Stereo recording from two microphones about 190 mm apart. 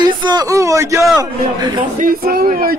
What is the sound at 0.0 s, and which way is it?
Speech, 25° right (ahead or behind).